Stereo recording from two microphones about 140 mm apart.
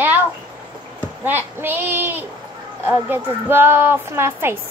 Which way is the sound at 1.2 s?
15° right (ahead or behind).